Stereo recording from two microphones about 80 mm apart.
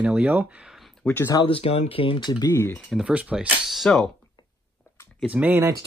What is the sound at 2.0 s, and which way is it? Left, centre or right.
Speech, left.